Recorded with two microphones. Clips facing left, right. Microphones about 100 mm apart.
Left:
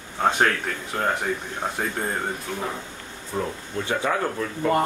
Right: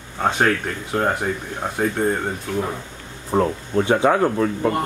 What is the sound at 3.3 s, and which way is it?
Speech, 45° right (ahead or behind).